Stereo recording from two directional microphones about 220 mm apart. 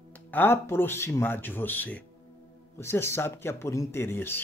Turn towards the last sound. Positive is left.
turn(degrees=10)  # may be behind; listen again after turning